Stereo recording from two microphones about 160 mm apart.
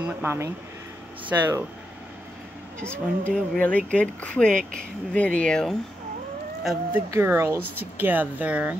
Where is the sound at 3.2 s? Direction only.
10° left (ahead or behind).